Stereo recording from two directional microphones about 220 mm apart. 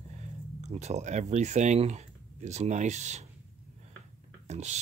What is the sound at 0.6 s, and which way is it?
Speech, 30° right (ahead or behind).